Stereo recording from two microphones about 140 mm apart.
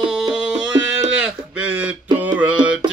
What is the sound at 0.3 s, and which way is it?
Music, 5° right (ahead or behind).